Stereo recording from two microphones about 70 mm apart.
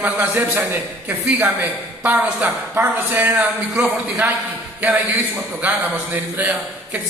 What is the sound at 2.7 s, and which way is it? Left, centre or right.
Speech, right.